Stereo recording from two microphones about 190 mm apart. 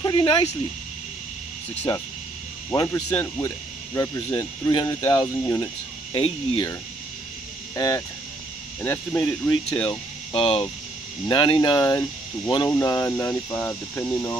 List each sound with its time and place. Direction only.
0.0 s speech: 25° left (ahead or behind)
2.7 s speech: 15° left (ahead or behind)
6.1 s speech: 30° left (ahead or behind)
7.7 s speech: 15° left (ahead or behind)
10.3 s speech: 30° left (ahead or behind); by 14.3 s 10° left (ahead or behind)